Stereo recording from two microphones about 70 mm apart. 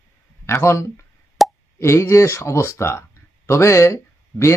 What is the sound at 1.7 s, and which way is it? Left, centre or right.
Speech, left.